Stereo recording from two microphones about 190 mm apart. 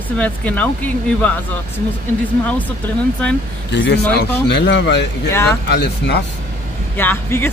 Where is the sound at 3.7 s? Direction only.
60° left (ahead or behind).